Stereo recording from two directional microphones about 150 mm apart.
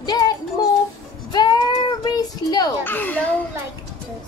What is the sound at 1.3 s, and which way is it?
A woman's voice, 30° left (ahead or behind).